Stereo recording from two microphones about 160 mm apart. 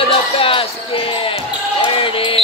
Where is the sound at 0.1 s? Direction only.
35° left (ahead or behind).